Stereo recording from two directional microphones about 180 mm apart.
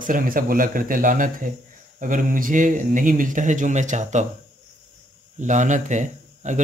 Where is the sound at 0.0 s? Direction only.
50° right (ahead or behind).